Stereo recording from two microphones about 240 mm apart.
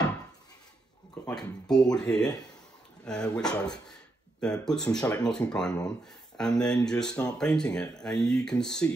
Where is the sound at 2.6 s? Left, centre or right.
Centre.